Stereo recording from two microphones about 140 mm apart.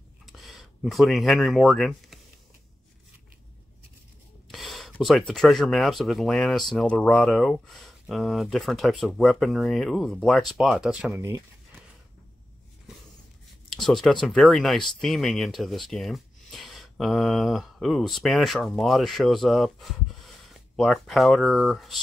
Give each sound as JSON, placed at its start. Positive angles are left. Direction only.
{"t": 0.3, "sound": "speech", "side_deg": 0}
{"t": 4.5, "sound": "gasp", "side_deg": 0}
{"t": 5.0, "sound": "speech", "side_deg": 0}
{"t": 11.1, "sound": "speech", "side_deg": -20}
{"t": 13.7, "sound": "a sound", "side_deg": 0}
{"t": 14.2, "sound": "speech", "side_deg": 0}